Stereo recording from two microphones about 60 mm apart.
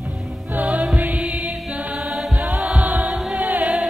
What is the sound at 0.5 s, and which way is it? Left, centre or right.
Music, right.